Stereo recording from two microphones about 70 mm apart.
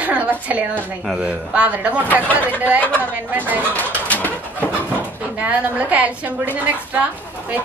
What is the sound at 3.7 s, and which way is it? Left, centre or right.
Bird, left.